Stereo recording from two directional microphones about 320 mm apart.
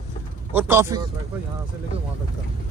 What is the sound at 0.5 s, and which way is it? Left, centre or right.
Speech, centre.